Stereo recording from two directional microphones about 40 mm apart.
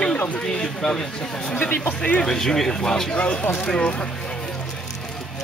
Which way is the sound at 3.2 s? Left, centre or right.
Left.